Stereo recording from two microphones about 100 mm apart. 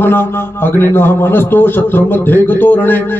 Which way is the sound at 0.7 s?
20° left (ahead or behind).